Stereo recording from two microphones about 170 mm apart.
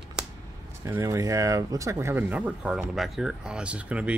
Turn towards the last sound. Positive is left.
turn(degrees=-10)  # may be behind; listen again after turning